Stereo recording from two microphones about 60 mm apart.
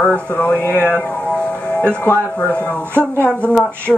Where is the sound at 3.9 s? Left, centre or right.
Centre.